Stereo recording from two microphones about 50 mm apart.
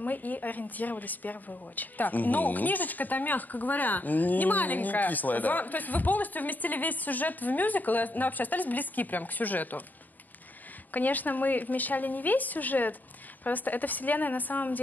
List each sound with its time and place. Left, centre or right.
0.0 s a woman's voice: left
10.9 s a woman's voice: left